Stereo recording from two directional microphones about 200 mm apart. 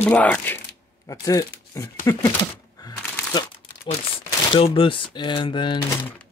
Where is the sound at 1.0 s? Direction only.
15° left (ahead or behind).